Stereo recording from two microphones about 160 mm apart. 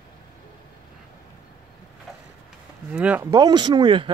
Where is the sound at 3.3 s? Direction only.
25° right (ahead or behind).